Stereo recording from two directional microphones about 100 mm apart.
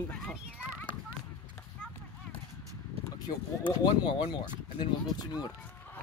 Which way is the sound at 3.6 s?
50° left (ahead or behind).